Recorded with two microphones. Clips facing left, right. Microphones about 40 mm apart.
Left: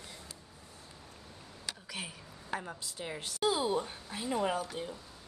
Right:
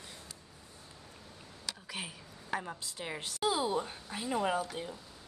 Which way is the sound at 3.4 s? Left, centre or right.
Centre.